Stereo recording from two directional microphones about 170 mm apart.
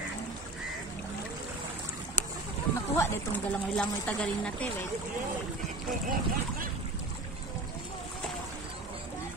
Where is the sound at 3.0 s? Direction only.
15° left (ahead or behind).